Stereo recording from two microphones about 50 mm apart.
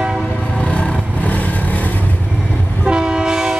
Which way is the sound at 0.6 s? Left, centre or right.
Left.